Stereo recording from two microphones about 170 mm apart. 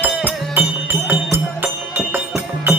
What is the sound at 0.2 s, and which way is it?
Music, 10° right (ahead or behind).